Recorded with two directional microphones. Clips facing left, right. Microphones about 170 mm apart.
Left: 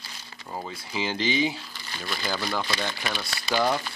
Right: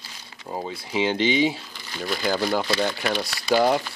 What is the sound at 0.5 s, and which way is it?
Speech, 20° right (ahead or behind).